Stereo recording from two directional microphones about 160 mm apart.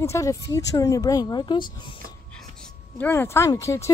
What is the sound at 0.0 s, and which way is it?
Speech, 20° left (ahead or behind).